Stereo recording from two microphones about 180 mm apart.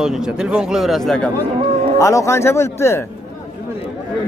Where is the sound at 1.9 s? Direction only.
15° left (ahead or behind).